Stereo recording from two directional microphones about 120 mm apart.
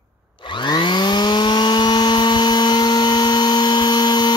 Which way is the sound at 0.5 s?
40° left (ahead or behind).